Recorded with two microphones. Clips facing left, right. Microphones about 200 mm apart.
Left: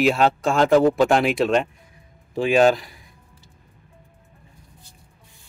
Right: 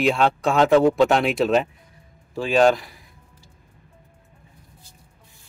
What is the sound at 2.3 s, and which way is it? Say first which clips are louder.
Speech: left 2 dB; 15° left (ahead or behind).